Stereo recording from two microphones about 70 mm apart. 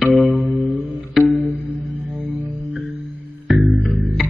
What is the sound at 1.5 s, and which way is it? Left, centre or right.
Music, right.